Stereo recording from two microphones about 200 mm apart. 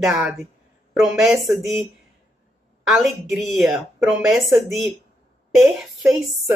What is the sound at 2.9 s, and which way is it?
Speech, centre (ahead or behind).